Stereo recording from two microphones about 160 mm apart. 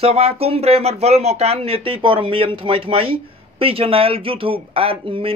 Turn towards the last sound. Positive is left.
turn(degrees=-35)  # may be behind; listen again after turning